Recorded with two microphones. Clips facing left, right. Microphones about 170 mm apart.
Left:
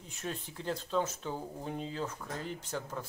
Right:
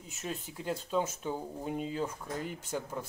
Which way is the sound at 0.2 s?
10° right (ahead or behind).